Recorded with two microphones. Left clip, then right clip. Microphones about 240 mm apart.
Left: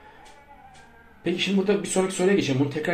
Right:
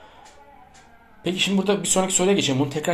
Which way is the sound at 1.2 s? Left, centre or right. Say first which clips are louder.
Right 2 dB; right.